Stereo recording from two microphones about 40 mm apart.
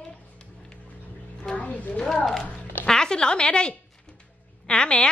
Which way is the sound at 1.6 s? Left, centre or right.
Left.